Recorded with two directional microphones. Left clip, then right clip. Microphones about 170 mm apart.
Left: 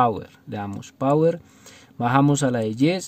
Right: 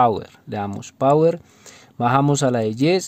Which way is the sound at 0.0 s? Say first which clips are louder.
Right 3 dB; 30° right (ahead or behind).